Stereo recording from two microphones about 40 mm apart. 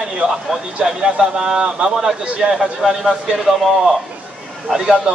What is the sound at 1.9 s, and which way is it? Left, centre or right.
A man's voice, centre.